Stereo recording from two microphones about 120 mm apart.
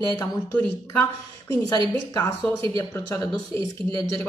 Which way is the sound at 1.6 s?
30° left (ahead or behind).